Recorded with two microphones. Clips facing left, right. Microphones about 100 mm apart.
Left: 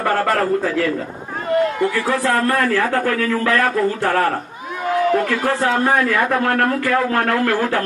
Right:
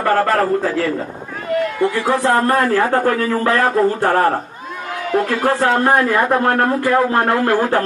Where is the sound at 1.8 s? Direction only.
20° right (ahead or behind).